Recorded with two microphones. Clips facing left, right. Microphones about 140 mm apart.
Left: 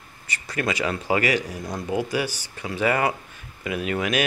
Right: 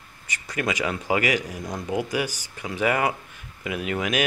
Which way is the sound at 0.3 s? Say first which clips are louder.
Left 1 dB; 15° right (ahead or behind).